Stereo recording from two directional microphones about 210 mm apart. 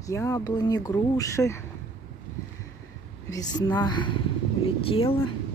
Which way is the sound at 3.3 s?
20° left (ahead or behind).